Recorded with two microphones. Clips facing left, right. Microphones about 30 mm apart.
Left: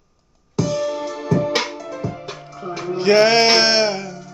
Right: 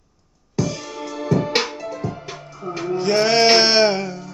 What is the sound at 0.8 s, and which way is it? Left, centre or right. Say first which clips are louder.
Music: left 7 dB; left.